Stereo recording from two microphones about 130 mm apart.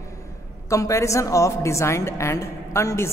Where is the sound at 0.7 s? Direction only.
25° left (ahead or behind).